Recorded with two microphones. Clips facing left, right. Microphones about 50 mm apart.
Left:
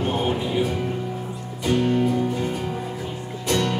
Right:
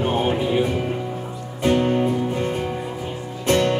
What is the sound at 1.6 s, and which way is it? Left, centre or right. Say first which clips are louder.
Music: right 2 dB; right.